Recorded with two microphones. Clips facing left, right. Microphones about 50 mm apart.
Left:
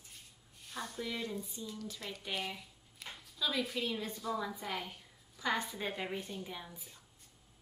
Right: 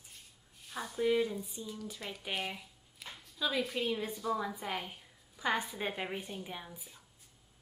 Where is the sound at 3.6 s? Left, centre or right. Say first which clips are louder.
Right 3 dB; centre.